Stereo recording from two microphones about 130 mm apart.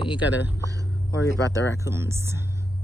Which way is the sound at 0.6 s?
25° right (ahead or behind).